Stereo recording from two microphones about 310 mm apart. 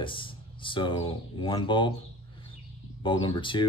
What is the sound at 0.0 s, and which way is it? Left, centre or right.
Speech, centre.